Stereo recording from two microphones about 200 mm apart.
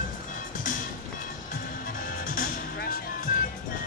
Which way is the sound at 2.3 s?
45° left (ahead or behind).